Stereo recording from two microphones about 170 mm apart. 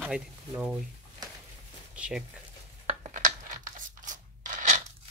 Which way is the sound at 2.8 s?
45° right (ahead or behind).